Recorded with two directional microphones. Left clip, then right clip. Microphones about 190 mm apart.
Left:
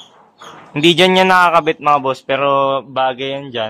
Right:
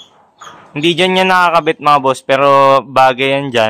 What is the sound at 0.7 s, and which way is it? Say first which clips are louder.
A man's voice: left 1 dB; 5° left (ahead or behind).